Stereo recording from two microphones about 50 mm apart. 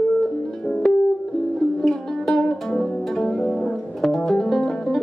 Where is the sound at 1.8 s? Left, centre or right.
Centre.